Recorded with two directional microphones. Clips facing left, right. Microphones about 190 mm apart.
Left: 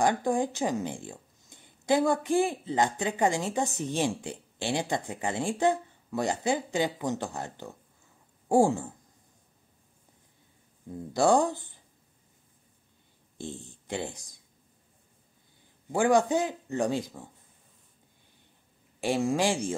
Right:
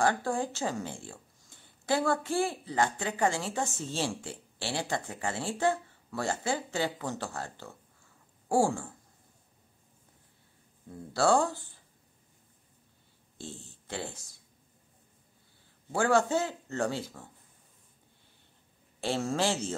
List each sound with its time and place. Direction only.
0.0 s speech: 15° left (ahead or behind)
10.9 s speech: 20° left (ahead or behind)
13.4 s speech: 15° left (ahead or behind)
15.9 s speech: 15° left (ahead or behind)
18.9 s speech: 15° left (ahead or behind)